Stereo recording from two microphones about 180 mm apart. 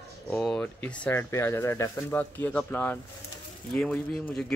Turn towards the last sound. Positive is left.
turn(degrees=5)  # may be behind; listen again after turning